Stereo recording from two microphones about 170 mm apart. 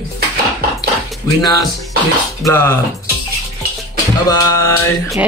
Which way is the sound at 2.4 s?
15° left (ahead or behind).